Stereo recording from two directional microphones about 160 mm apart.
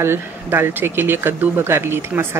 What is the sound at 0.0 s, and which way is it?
Speech, 15° right (ahead or behind).